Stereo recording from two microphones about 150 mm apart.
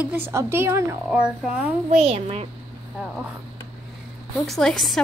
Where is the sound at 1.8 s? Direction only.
45° right (ahead or behind).